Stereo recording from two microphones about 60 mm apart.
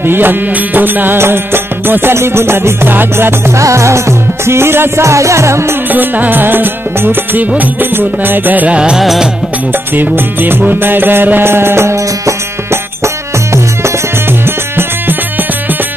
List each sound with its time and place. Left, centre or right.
0.0 s music: right
3.5 s music: right
4.5 s music: right
5.9 s music: right
8.7 s music: centre
9.0 s music: centre
9.9 s music: right